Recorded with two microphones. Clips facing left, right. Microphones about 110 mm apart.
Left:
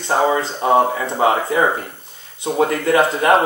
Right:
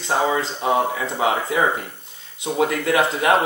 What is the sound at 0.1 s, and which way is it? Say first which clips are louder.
Speech: left 4 dB; 25° left (ahead or behind).